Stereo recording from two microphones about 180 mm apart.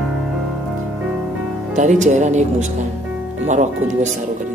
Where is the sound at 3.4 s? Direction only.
40° right (ahead or behind).